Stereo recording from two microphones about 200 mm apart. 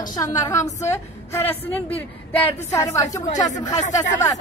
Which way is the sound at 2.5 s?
35° left (ahead or behind).